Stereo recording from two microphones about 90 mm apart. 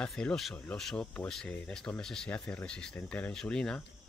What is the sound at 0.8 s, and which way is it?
Speech, 10° left (ahead or behind).